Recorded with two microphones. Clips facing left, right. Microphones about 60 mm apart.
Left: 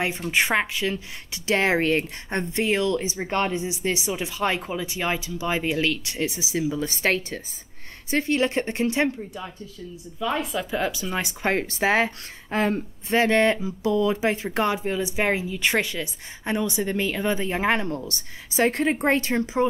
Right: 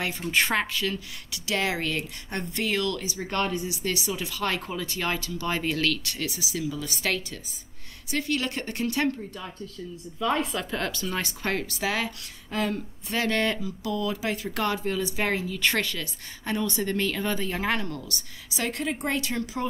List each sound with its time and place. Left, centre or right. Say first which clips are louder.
0.3 s a woman's voice: left 1 dB; centre
10.1 s speech: even; centre
11.5 s a woman's voice: left 7 dB; left